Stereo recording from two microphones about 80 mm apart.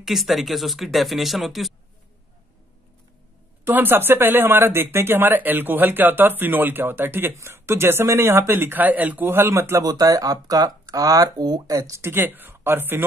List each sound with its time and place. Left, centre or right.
0.0 s speech: centre
3.6 s speech: right
9.8 s speech: right